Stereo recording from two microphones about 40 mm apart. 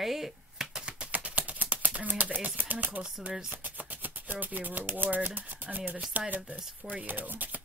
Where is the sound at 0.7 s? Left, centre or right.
Right.